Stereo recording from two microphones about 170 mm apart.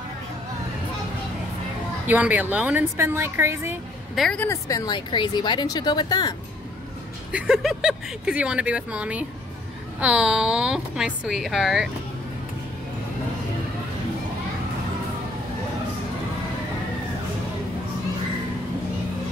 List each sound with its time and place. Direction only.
2.0 s speech: 10° right (ahead or behind)
4.1 s speech: 5° left (ahead or behind)
4.5 s speech: 20° left (ahead or behind)
7.3 s a woman's voice: 5° right (ahead or behind)